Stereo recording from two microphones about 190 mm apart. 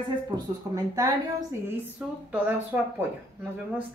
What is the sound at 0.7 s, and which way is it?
Speech, 20° right (ahead or behind).